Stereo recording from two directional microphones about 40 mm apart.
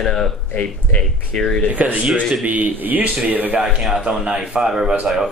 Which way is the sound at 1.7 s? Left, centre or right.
Right.